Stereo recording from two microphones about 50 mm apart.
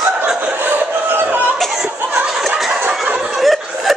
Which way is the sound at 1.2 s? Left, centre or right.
Right.